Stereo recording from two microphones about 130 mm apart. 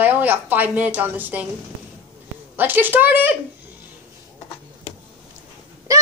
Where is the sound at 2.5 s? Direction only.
15° right (ahead or behind).